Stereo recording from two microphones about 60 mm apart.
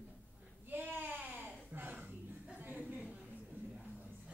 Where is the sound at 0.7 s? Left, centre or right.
Right.